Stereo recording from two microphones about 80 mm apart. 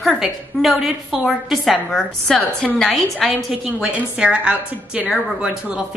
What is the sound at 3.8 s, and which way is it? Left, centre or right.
A woman's voice, centre.